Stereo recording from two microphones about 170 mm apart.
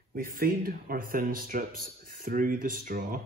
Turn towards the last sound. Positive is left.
turn(degrees=-60)  # may be behind; listen again after turning